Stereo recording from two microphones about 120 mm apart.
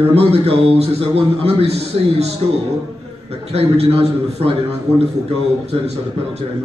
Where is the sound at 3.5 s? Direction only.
55° right (ahead or behind).